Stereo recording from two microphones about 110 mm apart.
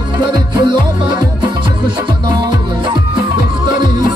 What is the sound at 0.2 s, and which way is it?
Music, 45° right (ahead or behind).